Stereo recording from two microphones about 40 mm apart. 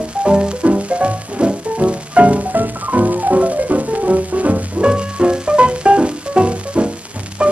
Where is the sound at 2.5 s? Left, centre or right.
Right.